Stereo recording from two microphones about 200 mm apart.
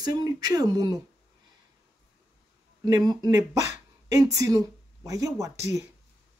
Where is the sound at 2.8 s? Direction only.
20° right (ahead or behind).